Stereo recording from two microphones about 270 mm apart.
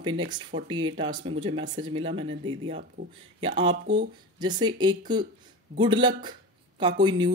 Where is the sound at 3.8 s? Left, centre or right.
Right.